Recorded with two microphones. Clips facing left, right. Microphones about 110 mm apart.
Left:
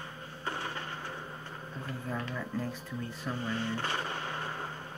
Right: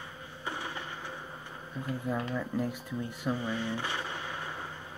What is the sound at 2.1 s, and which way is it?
Speech, 10° right (ahead or behind).